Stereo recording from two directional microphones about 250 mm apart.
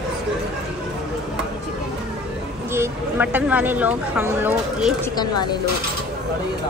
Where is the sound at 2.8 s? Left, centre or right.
Centre.